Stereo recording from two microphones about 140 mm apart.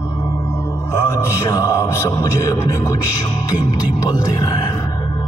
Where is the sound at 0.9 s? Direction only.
20° left (ahead or behind).